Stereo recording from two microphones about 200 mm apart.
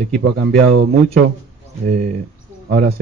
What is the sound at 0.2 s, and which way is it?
Speech, 50° right (ahead or behind).